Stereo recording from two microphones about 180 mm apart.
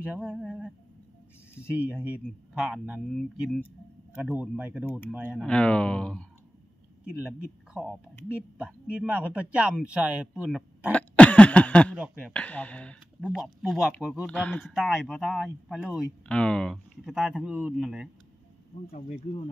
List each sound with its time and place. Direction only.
0.0 s speech: 5° right (ahead or behind)
2.5 s speech: 5° right (ahead or behind)
5.4 s speech: 5° left (ahead or behind)
7.7 s speech: 5° right (ahead or behind)
10.9 s cough: 10° left (ahead or behind)
12.0 s speech: 5° left (ahead or behind)
18.9 s speech: 35° left (ahead or behind)